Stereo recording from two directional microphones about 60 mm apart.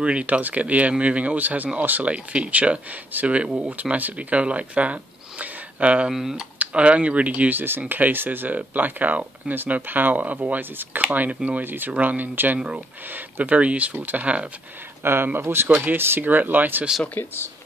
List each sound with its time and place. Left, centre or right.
0.0 s speech: right
6.1 s speech: centre
6.6 s speech: centre
12.5 s speech: centre
15.0 s speech: right